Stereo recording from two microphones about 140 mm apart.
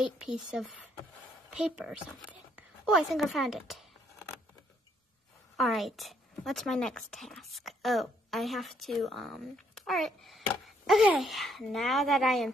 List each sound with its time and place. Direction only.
0.0 s a woman's voice: centre (ahead or behind)
5.6 s a woman's voice: centre (ahead or behind)